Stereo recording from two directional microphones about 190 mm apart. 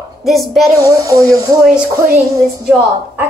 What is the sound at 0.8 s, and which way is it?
Speech, 15° right (ahead or behind).